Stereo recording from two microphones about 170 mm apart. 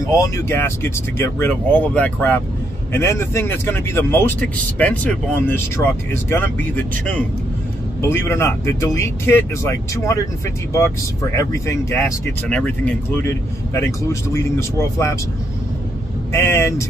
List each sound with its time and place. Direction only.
0.1 s speech: 15° left (ahead or behind)
14.3 s speech: 15° left (ahead or behind)
16.3 s speech: 15° left (ahead or behind)